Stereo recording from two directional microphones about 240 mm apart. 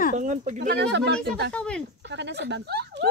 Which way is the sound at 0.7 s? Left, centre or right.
Right.